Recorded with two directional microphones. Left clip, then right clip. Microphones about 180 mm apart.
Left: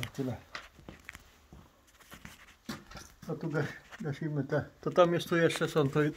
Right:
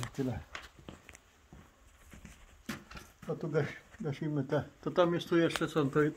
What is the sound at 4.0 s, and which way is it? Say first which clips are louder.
Speech: even; 5° right (ahead or behind).